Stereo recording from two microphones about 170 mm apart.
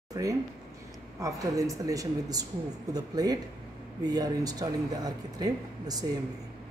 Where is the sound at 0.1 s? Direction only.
20° right (ahead or behind).